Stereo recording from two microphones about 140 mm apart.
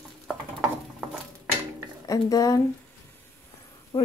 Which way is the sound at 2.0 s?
25° left (ahead or behind).